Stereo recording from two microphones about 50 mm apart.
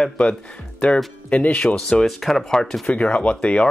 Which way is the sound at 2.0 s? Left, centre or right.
Centre.